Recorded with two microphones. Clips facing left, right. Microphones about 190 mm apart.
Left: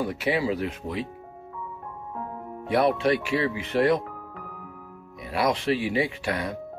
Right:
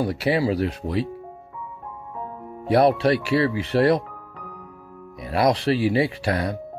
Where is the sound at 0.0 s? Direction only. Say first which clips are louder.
Right 4 dB; 35° right (ahead or behind).